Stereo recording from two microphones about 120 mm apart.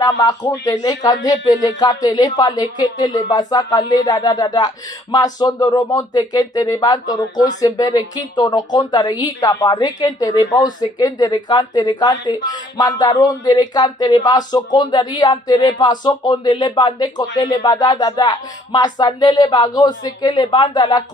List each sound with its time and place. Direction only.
0.0 s speech: 35° left (ahead or behind)